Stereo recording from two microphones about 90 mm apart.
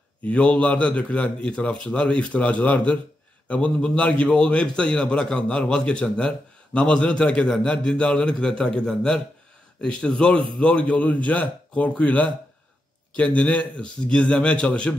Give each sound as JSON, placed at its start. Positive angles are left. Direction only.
{"t": 0.3, "sound": "a man's voice", "side_deg": 15}